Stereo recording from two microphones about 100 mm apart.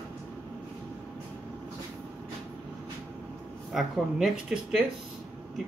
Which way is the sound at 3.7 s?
5° right (ahead or behind).